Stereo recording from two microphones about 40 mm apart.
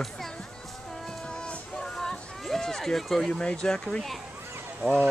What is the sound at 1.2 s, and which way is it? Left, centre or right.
Music, left.